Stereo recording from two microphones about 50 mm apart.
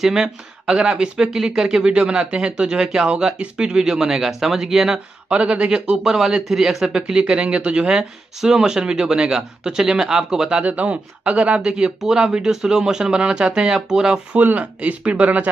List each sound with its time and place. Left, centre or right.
0.0 s speech: centre
0.7 s speech: centre
1.9 s speech: right
4.9 s speech: right
6.0 s speech: centre
6.9 s speech: centre
8.0 s speech: centre
10.6 s speech: right
11.6 s speech: centre
14.3 s speech: right